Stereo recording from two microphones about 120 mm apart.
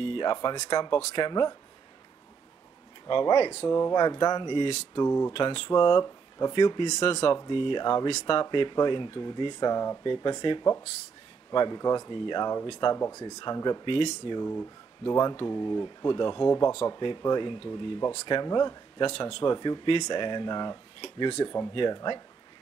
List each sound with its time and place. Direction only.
0.0 s speech: 45° left (ahead or behind)
3.1 s speech: 45° left (ahead or behind)
4.9 s speech: 25° left (ahead or behind)
5.3 s speech: 50° left (ahead or behind)
5.7 s speech: 35° left (ahead or behind)
6.9 s speech: 60° left (ahead or behind)
7.4 s speech: 45° left (ahead or behind)
12.8 s speech: 25° left (ahead or behind); by 14.0 s 45° left (ahead or behind)
14.4 s speech: 20° left (ahead or behind)
15.0 s speech: 40° left (ahead or behind)
19.1 s speech: 50° left (ahead or behind)
21.0 s speech: 55° left (ahead or behind)
21.5 s speech: 40° left (ahead or behind)